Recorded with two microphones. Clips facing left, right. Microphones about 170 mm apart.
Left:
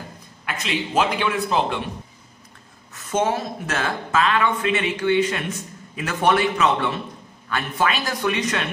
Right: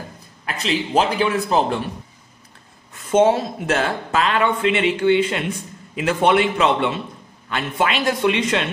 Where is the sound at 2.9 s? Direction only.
30° right (ahead or behind).